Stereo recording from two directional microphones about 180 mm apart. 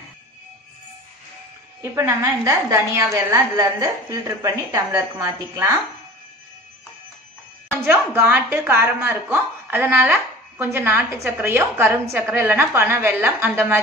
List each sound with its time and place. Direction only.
1.8 s a woman's voice: 15° right (ahead or behind)
7.8 s a woman's voice: 10° right (ahead or behind)